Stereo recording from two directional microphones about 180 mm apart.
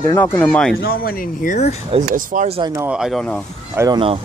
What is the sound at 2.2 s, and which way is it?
Speech, 50° right (ahead or behind).